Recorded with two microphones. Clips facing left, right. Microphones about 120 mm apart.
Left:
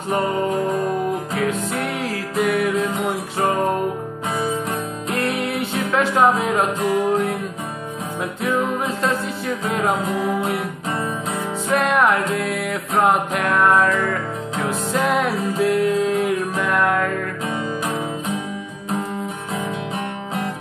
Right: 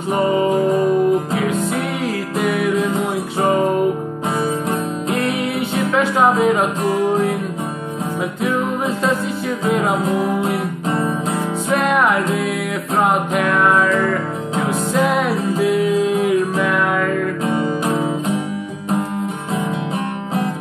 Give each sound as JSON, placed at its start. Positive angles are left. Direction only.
{"t": 0.1, "sound": "music", "side_deg": 0}
{"t": 5.1, "sound": "music", "side_deg": 0}
{"t": 11.7, "sound": "music", "side_deg": 0}
{"t": 15.0, "sound": "music", "side_deg": 0}
{"t": 17.6, "sound": "music", "side_deg": -40}